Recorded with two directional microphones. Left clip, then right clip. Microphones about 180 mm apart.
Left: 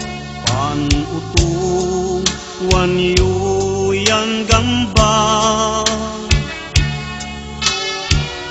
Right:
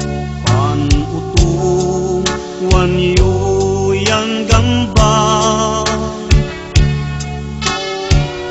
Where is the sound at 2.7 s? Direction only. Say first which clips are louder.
Right 1 dB; 10° left (ahead or behind).